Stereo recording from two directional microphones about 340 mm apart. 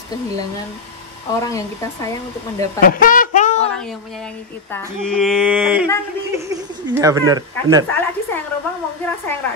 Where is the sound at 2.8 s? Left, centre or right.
Left.